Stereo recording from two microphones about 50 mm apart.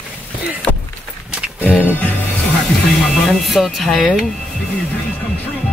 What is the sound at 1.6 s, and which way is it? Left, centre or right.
Music, left.